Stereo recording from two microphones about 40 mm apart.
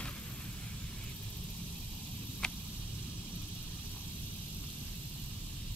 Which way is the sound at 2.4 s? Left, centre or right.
Left.